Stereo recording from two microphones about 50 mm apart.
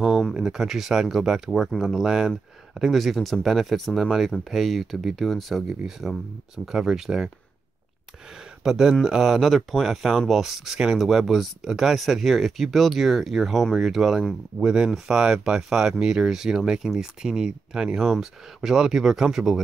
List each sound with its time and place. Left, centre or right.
0.3 s speech: centre
8.6 s speech: centre
14.6 s speech: centre